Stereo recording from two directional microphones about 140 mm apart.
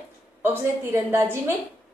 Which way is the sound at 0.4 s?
15° right (ahead or behind).